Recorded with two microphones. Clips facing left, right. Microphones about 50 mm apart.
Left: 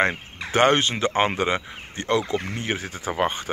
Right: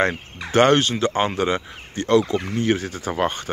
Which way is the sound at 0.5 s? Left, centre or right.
Centre.